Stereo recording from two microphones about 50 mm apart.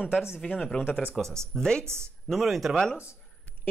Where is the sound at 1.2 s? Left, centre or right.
Centre.